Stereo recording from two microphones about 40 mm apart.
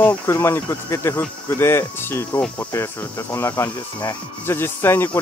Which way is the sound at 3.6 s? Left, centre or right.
Left.